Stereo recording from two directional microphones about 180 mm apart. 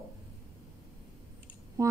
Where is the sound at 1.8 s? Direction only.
20° right (ahead or behind).